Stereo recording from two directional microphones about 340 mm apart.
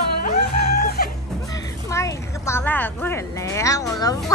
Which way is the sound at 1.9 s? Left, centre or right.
Centre.